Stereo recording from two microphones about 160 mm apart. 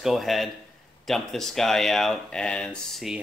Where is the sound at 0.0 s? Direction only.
Centre (ahead or behind).